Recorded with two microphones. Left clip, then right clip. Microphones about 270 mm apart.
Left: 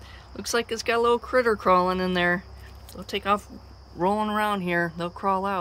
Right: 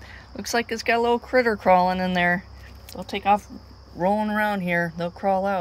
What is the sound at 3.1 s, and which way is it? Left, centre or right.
Speech, centre.